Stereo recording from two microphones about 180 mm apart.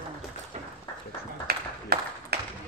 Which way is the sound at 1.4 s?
60° right (ahead or behind).